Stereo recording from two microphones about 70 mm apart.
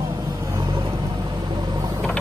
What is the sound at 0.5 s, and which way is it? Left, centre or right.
Vehicle, right.